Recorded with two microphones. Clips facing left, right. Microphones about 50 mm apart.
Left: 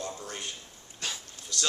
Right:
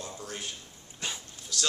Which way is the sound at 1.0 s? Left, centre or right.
Centre.